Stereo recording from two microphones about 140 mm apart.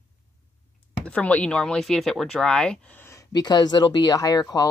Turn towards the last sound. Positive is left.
turn(degrees=25)  # may be behind; listen again after turning